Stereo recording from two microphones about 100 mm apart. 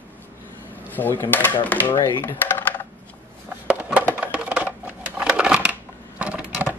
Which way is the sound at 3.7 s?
10° right (ahead or behind).